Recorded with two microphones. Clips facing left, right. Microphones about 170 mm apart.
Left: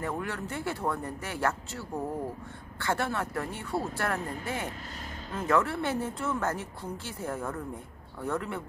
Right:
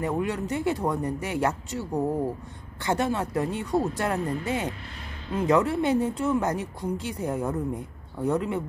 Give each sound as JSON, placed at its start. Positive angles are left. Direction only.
{"t": 0.0, "sound": "speech", "side_deg": -20}